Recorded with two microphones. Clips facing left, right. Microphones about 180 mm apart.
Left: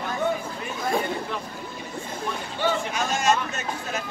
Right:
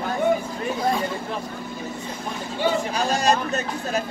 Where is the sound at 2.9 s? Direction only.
35° right (ahead or behind).